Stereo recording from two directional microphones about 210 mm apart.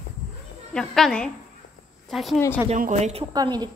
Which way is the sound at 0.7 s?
5° left (ahead or behind).